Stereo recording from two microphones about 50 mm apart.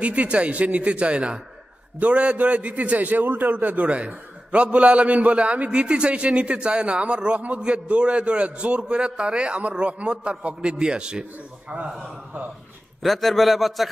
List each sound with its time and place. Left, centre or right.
0.0 s a man's voice: right
11.7 s a man's voice: right
13.0 s a man's voice: centre